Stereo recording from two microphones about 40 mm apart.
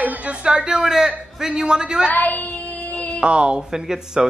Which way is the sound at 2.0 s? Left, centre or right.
Left.